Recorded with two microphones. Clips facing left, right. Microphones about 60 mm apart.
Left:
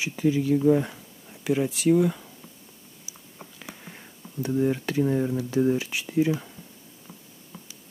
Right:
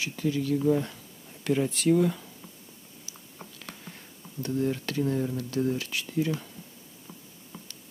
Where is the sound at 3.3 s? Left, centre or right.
Centre.